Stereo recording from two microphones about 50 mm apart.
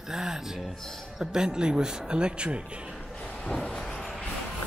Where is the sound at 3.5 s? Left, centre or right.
Centre.